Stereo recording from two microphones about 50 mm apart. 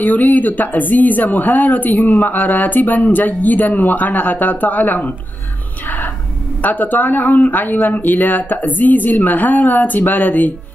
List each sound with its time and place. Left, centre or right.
0.0 s speech: left
5.9 s a sound: left
6.6 s speech: left